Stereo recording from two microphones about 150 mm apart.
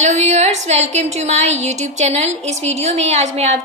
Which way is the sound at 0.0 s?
50° right (ahead or behind).